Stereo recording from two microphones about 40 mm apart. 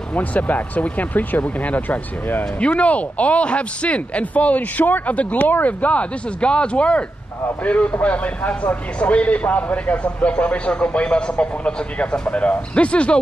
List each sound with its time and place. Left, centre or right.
0.1 s speech: left
5.4 s speech: left
5.7 s speech: left